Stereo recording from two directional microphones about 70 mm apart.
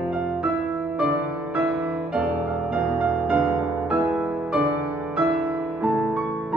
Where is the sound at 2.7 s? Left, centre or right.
Centre.